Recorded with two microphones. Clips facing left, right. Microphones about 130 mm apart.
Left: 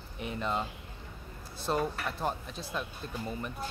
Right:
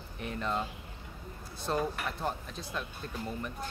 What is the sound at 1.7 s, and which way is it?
Speech, 10° left (ahead or behind).